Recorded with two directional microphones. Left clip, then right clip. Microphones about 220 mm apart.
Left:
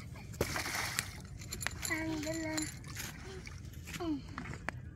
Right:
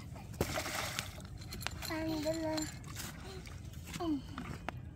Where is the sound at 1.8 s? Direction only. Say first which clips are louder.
Right 2 dB; 50° right (ahead or behind).